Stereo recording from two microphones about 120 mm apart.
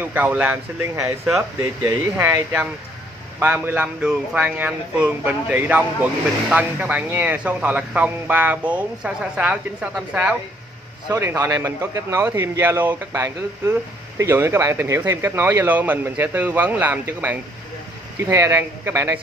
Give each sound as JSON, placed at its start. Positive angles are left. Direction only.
{"t": 0.0, "sound": "speech", "side_deg": -15}
{"t": 1.0, "sound": "speech", "side_deg": -5}
{"t": 2.1, "sound": "a man's voice", "side_deg": -15}